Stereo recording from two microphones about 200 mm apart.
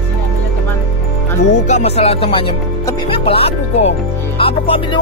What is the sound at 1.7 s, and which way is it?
Speech, 35° left (ahead or behind).